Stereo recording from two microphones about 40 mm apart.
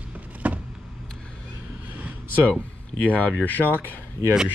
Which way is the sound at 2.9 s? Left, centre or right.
Left.